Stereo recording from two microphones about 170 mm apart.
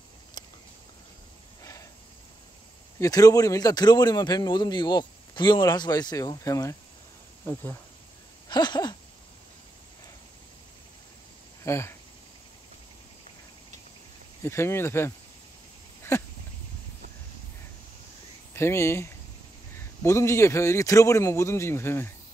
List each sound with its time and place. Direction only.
1.6 s a sound: 20° left (ahead or behind)
3.0 s speech: 20° left (ahead or behind)
8.5 s speech: 25° left (ahead or behind)
11.6 s speech: 15° left (ahead or behind)
14.4 s a man's voice: 15° left (ahead or behind)
18.5 s a man's voice: 15° left (ahead or behind)